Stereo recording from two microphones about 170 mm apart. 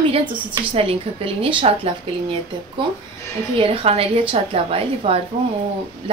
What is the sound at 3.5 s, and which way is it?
A woman's voice, 35° right (ahead or behind).